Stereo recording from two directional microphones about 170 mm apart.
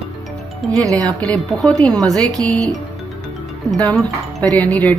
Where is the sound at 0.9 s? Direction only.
5° left (ahead or behind).